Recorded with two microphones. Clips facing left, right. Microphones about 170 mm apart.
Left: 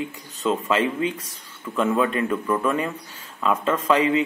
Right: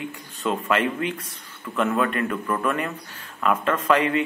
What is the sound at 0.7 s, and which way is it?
Speech, 25° left (ahead or behind).